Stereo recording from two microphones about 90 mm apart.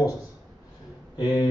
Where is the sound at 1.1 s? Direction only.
50° left (ahead or behind).